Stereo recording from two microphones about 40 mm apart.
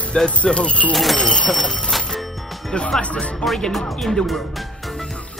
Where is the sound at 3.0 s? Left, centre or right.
Left.